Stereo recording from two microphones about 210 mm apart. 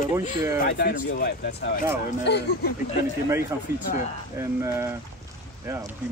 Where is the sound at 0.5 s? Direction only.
45° left (ahead or behind).